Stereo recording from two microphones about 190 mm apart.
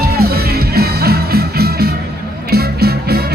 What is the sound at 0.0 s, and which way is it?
Music, 55° right (ahead or behind).